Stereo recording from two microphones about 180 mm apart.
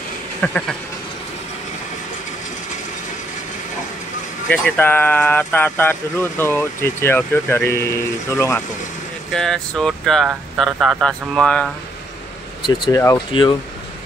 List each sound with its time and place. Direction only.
0.4 s speech: 5° left (ahead or behind)
4.5 s speech: 10° left (ahead or behind)
9.3 s speech: 5° left (ahead or behind)
12.6 s speech: 25° left (ahead or behind)